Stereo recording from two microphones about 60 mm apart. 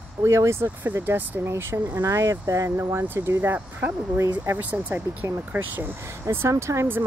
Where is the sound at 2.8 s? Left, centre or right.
Right.